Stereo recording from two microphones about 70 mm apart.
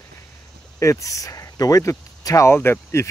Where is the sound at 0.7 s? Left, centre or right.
Left.